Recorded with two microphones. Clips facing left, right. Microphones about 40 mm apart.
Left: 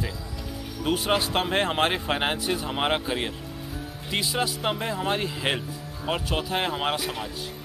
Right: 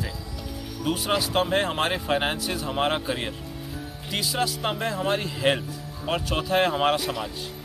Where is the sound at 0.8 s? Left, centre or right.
Left; by 7.1 s centre.